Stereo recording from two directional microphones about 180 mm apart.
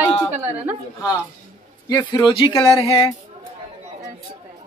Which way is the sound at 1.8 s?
25° left (ahead or behind).